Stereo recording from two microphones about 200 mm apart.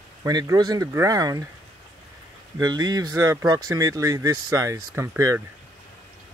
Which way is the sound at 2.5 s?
20° right (ahead or behind).